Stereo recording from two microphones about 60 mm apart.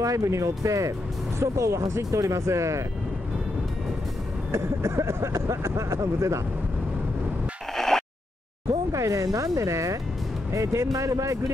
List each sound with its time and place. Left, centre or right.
0.0 s speech: right
4.5 s speech: right
7.7 s a sound: centre
8.9 s speech: right